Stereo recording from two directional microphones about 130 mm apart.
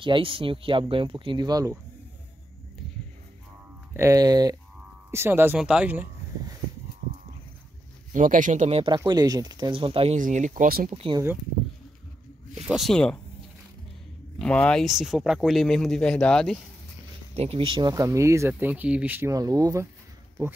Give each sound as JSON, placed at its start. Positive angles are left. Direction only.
{"t": 0.0, "sound": "speech", "side_deg": -40}
{"t": 3.9, "sound": "speech", "side_deg": -25}
{"t": 5.1, "sound": "speech", "side_deg": -15}
{"t": 8.1, "sound": "speech", "side_deg": -85}
{"t": 8.8, "sound": "speech", "side_deg": -30}
{"t": 9.8, "sound": "speech", "side_deg": -45}
{"t": 10.1, "sound": "speech", "side_deg": -70}
{"t": 10.9, "sound": "speech", "side_deg": -45}
{"t": 12.6, "sound": "speech", "side_deg": 0}
{"t": 14.4, "sound": "speech", "side_deg": 10}
{"t": 17.3, "sound": "speech", "side_deg": -50}
{"t": 17.9, "sound": "speech", "side_deg": -25}
{"t": 19.3, "sound": "speech", "side_deg": -30}